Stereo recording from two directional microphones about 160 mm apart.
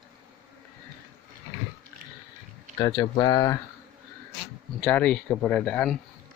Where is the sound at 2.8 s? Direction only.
25° left (ahead or behind).